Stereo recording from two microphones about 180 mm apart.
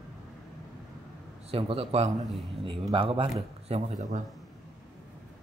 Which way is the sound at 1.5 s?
30° right (ahead or behind).